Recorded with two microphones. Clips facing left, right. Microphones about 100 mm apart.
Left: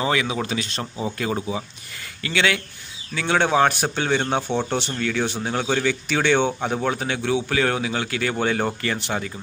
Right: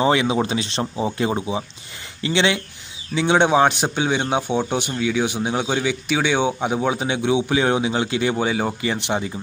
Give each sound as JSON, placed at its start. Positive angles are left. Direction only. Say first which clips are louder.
{"t": 0.0, "sound": "a man's voice", "louder": "right 5 dB", "side_deg": -25}
{"t": 8.9, "sound": "speech", "louder": "right 3 dB", "side_deg": -20}